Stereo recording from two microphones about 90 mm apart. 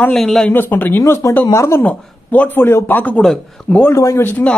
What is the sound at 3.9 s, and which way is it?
Speech, 30° left (ahead or behind).